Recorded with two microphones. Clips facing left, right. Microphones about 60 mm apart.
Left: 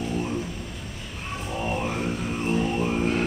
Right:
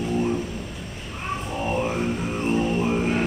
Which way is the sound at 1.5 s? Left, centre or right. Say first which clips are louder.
Right 2 dB; centre.